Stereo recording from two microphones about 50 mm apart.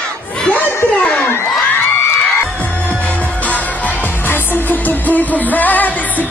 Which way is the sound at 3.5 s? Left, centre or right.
Left.